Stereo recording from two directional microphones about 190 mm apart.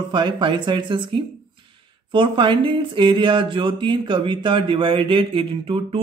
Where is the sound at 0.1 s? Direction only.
25° right (ahead or behind).